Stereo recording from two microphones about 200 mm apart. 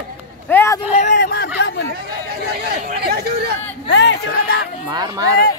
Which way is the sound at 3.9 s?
60° left (ahead or behind).